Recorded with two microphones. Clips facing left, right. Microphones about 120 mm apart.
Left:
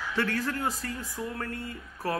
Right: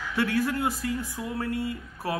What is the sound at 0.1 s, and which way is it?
Speech, 15° right (ahead or behind).